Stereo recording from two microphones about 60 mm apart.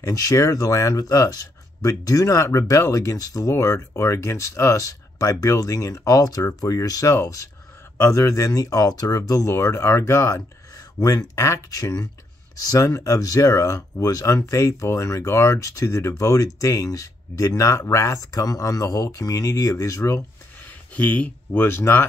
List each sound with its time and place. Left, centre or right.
0.0 s speech: left
3.5 s speech: left
8.0 s speech: left
10.7 s speech: left
12.8 s speech: left
20.5 s a sound: left
21.5 s speech: left